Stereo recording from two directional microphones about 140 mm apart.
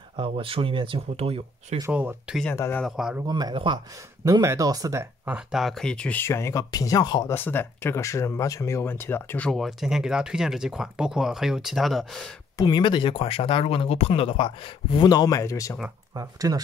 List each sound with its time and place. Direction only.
0.1 s speech: 40° right (ahead or behind)
1.9 s speech: 10° right (ahead or behind)
2.5 s speech: 20° left (ahead or behind)
2.8 s speech: 5° right (ahead or behind)
3.3 s speech: 30° right (ahead or behind)
4.2 s speech: 25° right (ahead or behind)
5.2 s speech: 5° right (ahead or behind); by 7.2 s 30° left (ahead or behind)
7.2 s speech: 15° left (ahead or behind)
9.5 s speech: centre (ahead or behind)
12.5 s speech: 30° left (ahead or behind)
16.2 s speech: 25° right (ahead or behind)